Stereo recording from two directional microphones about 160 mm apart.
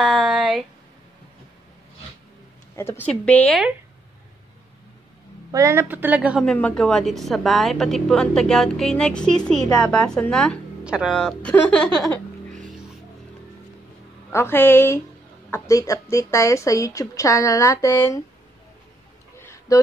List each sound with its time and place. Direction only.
0.0 s a sound: 5° right (ahead or behind)
2.7 s a woman's voice: 20° left (ahead or behind)
3.1 s a woman's voice: 5° left (ahead or behind)
5.5 s a woman's voice: 20° right (ahead or behind)
6.4 s a woman's voice: 5° left (ahead or behind)
10.8 s speech: 5° right (ahead or behind)
11.1 s speech: 5° left (ahead or behind)
14.3 s a woman's voice: 15° left (ahead or behind)
19.3 s a sound: 15° left (ahead or behind)